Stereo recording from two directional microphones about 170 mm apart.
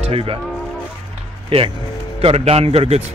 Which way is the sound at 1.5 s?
30° right (ahead or behind).